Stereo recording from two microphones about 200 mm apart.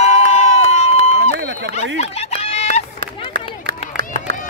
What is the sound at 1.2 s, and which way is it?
Run, 60° right (ahead or behind).